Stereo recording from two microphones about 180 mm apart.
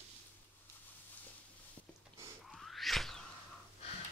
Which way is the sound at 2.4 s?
Centre (ahead or behind).